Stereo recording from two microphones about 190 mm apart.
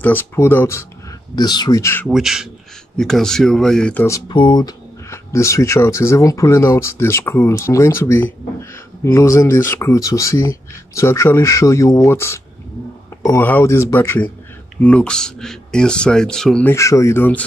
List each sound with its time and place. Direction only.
0.0 s speech: 10° left (ahead or behind)
2.0 s speech: centre (ahead or behind)
4.3 s speech: 25° left (ahead or behind); by 16.7 s 5° left (ahead or behind)
16.7 s speech: 15° left (ahead or behind)